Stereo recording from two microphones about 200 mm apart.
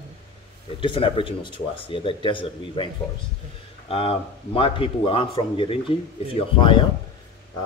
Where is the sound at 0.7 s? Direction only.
25° left (ahead or behind).